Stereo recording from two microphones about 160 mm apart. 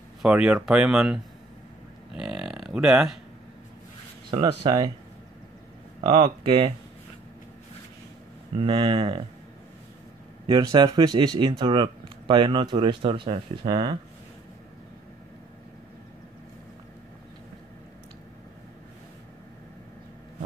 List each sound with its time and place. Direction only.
0.2 s speech: 5° right (ahead or behind)
2.1 s a sound: 5° right (ahead or behind)
4.3 s speech: 30° right (ahead or behind)
5.9 s speech: 35° right (ahead or behind)
8.5 s speech: 35° right (ahead or behind)
10.4 s speech: 30° right (ahead or behind)